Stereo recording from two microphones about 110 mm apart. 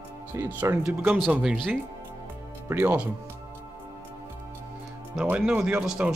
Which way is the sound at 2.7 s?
20° right (ahead or behind).